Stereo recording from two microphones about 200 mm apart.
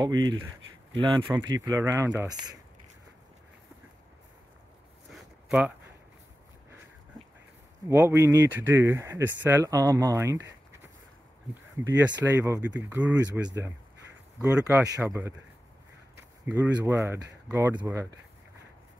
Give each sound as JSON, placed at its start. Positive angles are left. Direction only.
{"t": 0.2, "sound": "speech", "side_deg": -75}
{"t": 1.0, "sound": "speech", "side_deg": -20}
{"t": 5.1, "sound": "a sound", "side_deg": -5}
{"t": 7.9, "sound": "speech", "side_deg": -15}
{"t": 16.4, "sound": "speech", "side_deg": -10}